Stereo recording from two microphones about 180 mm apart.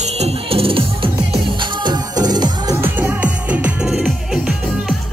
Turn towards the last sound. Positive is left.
turn(degrees=-5)  # may be behind; listen again after turning